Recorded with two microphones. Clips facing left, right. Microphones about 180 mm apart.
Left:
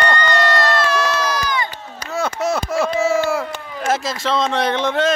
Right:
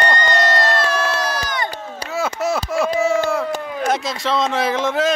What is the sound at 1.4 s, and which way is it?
Crowd, 30° right (ahead or behind).